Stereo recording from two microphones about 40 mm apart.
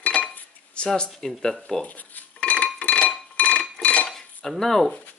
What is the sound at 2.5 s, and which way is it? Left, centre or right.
Chink, left.